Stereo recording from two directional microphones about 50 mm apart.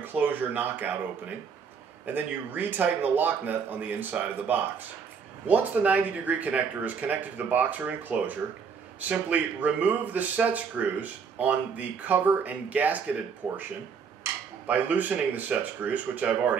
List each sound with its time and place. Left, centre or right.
0.0 s speech: right
2.0 s speech: right
5.5 s speech: right
13.4 s speech: centre
14.7 s speech: right